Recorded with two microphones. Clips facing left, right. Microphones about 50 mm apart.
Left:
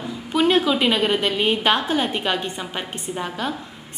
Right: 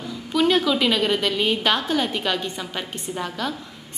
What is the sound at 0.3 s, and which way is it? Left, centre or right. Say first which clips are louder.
A woman's voice: left 1 dB; centre.